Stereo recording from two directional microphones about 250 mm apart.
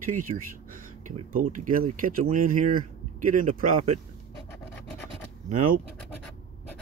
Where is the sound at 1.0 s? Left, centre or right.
Right.